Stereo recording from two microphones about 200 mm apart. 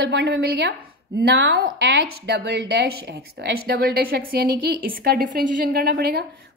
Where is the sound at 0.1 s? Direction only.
60° right (ahead or behind).